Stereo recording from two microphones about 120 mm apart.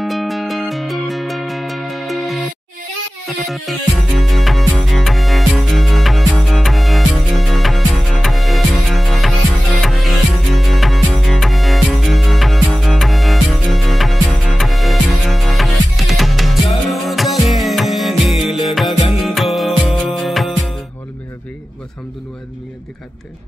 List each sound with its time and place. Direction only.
0.0 s music: centre (ahead or behind)